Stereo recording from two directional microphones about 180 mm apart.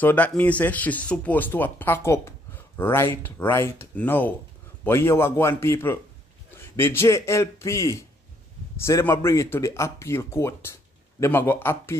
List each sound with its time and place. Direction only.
0.0 s speech: 10° left (ahead or behind)